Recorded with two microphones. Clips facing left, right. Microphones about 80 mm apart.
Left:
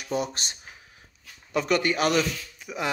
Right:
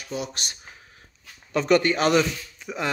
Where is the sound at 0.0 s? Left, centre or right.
Left.